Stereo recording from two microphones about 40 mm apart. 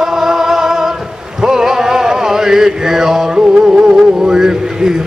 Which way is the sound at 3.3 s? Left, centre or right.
Right.